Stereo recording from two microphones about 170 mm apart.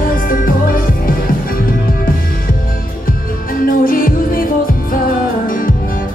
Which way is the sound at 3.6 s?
55° left (ahead or behind).